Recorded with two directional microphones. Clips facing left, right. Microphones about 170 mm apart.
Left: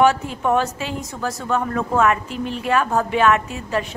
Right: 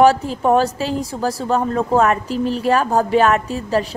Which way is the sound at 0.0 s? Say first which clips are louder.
Right 4 dB; 35° right (ahead or behind).